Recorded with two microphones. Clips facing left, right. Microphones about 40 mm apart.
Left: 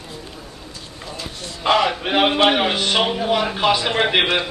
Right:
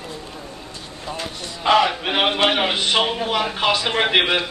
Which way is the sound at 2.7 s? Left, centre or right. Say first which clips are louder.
Even; centre.